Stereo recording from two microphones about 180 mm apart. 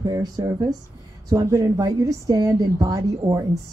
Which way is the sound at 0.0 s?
20° right (ahead or behind).